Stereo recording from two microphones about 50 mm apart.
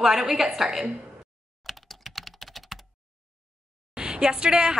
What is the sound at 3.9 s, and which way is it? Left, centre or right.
Speech, centre.